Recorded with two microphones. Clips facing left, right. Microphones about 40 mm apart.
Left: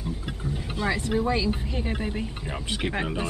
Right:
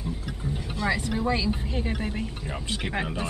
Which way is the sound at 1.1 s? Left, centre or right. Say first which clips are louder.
Left 2 dB; centre.